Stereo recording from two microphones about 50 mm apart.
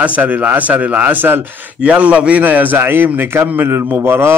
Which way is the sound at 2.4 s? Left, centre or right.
Right.